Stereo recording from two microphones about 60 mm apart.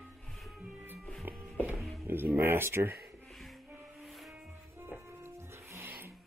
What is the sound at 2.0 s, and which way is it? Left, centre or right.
Speech, right.